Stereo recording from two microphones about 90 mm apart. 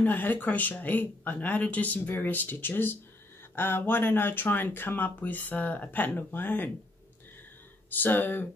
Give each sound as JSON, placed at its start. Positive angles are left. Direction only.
{"t": 0.0, "sound": "speech", "side_deg": 20}
{"t": 7.9, "sound": "speech", "side_deg": 20}